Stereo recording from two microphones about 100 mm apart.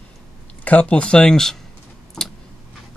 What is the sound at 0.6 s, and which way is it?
Speech, 15° left (ahead or behind).